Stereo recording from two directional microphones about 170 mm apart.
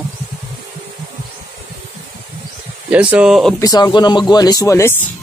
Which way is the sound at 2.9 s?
5° right (ahead or behind).